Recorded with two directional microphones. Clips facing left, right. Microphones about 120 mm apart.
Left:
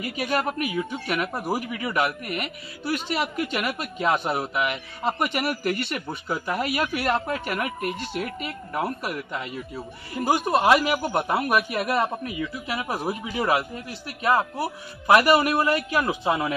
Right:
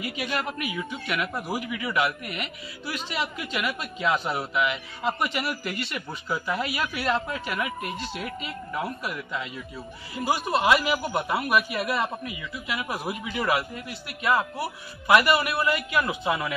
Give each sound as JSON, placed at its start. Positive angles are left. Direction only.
{"t": 0.0, "sound": "a man's voice", "side_deg": 45}